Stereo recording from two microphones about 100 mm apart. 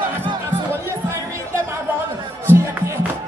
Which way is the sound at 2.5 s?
25° right (ahead or behind).